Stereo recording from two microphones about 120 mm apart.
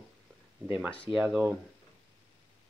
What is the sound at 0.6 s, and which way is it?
Speech, 15° right (ahead or behind).